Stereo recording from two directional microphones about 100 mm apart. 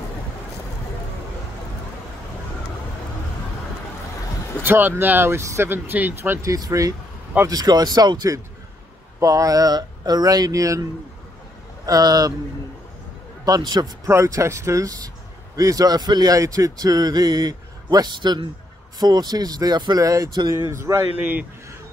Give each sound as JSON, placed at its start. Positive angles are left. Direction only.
{"t": 4.6, "sound": "speech", "side_deg": -20}
{"t": 6.4, "sound": "speech", "side_deg": -35}
{"t": 13.5, "sound": "speech", "side_deg": -45}
{"t": 14.0, "sound": "speech", "side_deg": -30}
{"t": 21.2, "sound": "a man's voice", "side_deg": -15}